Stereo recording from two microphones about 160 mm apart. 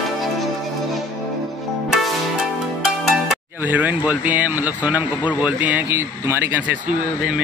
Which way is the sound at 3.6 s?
10° right (ahead or behind).